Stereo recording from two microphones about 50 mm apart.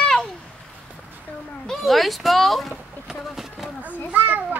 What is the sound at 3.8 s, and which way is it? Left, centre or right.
Children playing, right.